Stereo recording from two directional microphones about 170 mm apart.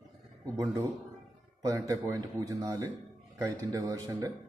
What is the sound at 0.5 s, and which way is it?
Speech, 20° right (ahead or behind).